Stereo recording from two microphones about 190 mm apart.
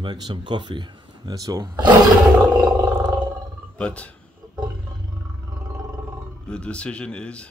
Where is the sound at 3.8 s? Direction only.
5° left (ahead or behind).